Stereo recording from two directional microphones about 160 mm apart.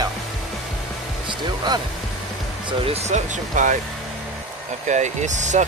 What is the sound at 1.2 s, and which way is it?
Speech, 25° right (ahead or behind).